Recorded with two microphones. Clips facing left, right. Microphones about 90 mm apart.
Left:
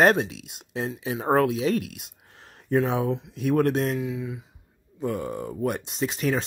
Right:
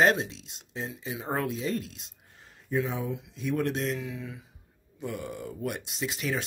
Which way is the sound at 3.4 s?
55° left (ahead or behind).